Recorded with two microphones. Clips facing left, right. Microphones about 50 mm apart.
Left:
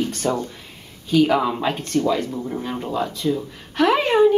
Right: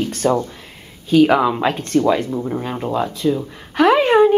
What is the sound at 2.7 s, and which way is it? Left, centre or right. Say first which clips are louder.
Speech: right 3 dB; centre.